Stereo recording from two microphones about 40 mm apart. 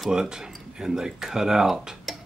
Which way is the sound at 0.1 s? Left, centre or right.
Centre.